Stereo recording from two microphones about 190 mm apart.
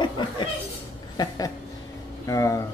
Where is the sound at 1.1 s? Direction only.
20° left (ahead or behind).